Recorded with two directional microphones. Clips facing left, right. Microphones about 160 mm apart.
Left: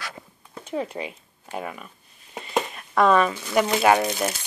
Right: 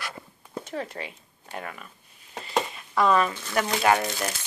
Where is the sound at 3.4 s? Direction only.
15° left (ahead or behind).